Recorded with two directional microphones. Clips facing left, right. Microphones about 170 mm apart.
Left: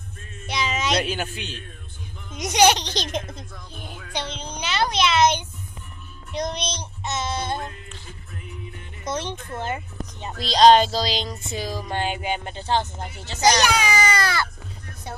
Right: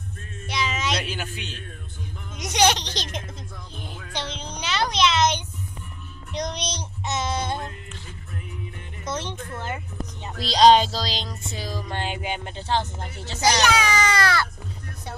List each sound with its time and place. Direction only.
0.5 s child singing: 20° left (ahead or behind)
1.0 s a man's voice: 40° left (ahead or behind)
2.3 s speech: 15° left (ahead or behind)
3.7 s music: 5° left (ahead or behind)
5.1 s a sound: 55° left (ahead or behind)
7.1 s music: 15° right (ahead or behind)
9.0 s speech: 15° left (ahead or behind)
10.4 s music: 5° right (ahead or behind)
13.4 s speech: 15° left (ahead or behind)
13.8 s cat: 10° left (ahead or behind)